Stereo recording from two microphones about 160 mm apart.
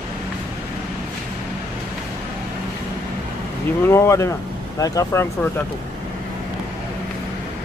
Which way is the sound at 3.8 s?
15° left (ahead or behind).